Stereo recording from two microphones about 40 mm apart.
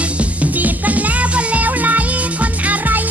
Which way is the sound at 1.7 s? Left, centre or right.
Right.